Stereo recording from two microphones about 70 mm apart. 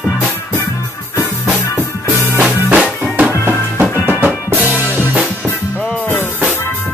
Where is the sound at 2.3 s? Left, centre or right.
Centre.